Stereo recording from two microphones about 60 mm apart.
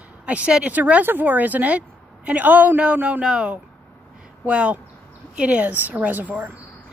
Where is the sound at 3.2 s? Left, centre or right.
Centre.